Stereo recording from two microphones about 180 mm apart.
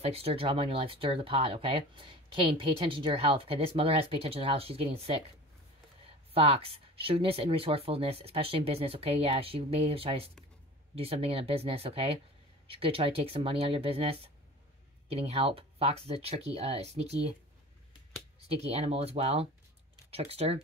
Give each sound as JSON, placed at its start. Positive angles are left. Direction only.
{"t": 0.0, "sound": "speech", "side_deg": -35}
{"t": 6.3, "sound": "speech", "side_deg": -35}
{"t": 18.5, "sound": "speech", "side_deg": -35}